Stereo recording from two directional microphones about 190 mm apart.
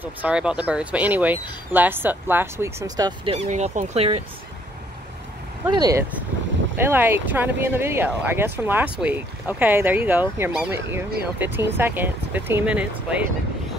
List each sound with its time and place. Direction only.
0.0 s speech: 5° right (ahead or behind)
3.3 s speech: 35° right (ahead or behind)
5.7 s speech: 20° right (ahead or behind)